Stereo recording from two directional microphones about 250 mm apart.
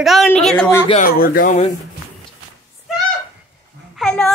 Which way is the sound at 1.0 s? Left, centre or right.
Left.